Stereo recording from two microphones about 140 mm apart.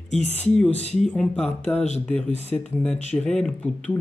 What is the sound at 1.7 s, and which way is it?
Speech, 55° left (ahead or behind).